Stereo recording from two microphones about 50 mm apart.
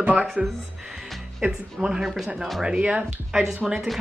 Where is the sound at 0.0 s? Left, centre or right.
Right.